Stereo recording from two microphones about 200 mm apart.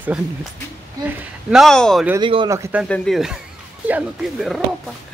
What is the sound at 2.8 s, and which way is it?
Speech, centre (ahead or behind).